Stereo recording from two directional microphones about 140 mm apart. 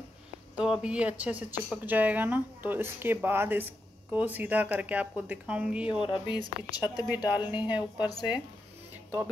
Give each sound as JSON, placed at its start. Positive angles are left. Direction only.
{"t": 0.6, "sound": "speech", "side_deg": -5}
{"t": 6.0, "sound": "speech", "side_deg": 35}